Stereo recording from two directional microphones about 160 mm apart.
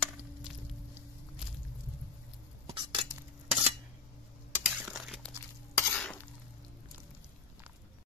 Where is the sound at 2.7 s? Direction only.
30° right (ahead or behind).